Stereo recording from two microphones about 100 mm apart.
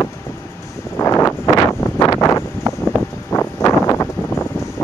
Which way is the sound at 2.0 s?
35° left (ahead or behind).